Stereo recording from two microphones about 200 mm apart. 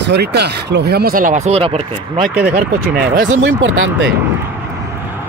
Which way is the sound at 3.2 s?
65° right (ahead or behind).